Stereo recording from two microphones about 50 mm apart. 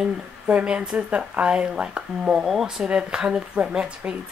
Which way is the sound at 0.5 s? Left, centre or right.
Right.